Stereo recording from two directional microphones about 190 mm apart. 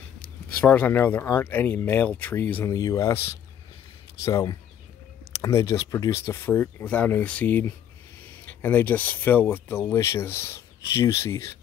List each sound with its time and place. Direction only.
0.6 s speech: 10° left (ahead or behind)